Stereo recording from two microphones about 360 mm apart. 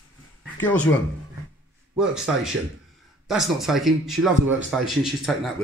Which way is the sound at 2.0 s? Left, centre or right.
Centre.